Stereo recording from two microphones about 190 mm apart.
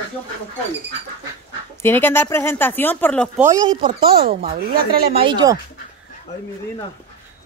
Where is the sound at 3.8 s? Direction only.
35° right (ahead or behind).